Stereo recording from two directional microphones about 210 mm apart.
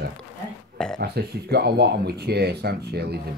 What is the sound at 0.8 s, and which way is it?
Speech, 5° left (ahead or behind).